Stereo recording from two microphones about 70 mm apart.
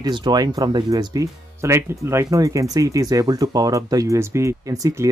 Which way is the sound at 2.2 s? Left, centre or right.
Right.